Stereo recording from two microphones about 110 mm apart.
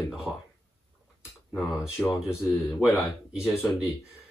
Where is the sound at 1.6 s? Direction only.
5° right (ahead or behind).